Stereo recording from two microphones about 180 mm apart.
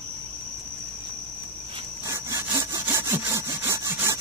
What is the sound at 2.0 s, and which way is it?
Sawing, 15° right (ahead or behind).